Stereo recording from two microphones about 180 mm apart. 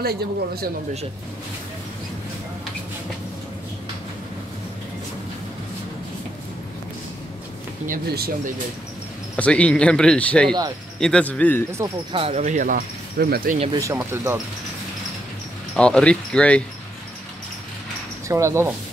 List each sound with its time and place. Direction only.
0.0 s speech: 60° right (ahead or behind)
7.9 s speech: 55° right (ahead or behind)
9.4 s speech: 5° left (ahead or behind)
12.1 s speech: 30° right (ahead or behind)
12.4 s speech: 45° right (ahead or behind)
13.7 s speech: 20° right (ahead or behind)
15.7 s speech: 5° left (ahead or behind)
18.3 s speech: 15° right (ahead or behind)